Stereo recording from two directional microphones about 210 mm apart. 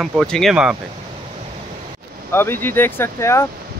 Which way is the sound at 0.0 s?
Centre (ahead or behind).